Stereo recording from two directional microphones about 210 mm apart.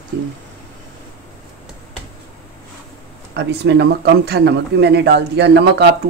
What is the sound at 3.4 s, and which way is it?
A man's voice, 55° right (ahead or behind).